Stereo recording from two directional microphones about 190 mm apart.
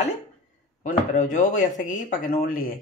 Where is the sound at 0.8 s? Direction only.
45° left (ahead or behind).